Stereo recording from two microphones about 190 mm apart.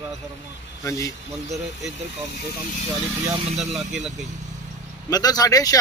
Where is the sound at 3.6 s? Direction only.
Centre (ahead or behind).